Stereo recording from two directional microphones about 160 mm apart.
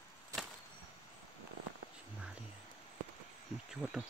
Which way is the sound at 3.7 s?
5° right (ahead or behind).